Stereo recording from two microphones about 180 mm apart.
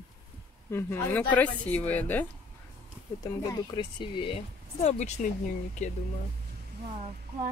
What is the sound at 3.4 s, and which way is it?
Speech, 25° left (ahead or behind).